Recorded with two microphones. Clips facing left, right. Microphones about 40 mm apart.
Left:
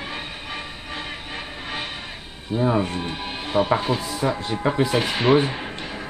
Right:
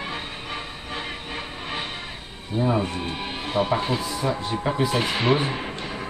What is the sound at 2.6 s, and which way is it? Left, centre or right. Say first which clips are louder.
Speech: left 2 dB; centre.